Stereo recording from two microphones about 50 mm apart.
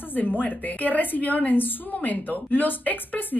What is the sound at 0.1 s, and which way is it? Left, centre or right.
A woman's voice, left.